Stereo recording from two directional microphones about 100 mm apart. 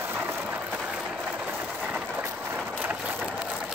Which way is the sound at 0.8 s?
5° right (ahead or behind).